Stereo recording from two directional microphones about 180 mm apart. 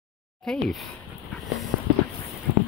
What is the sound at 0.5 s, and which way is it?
Speech, 5° left (ahead or behind).